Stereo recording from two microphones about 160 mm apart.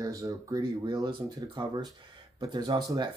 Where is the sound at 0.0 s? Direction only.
20° right (ahead or behind).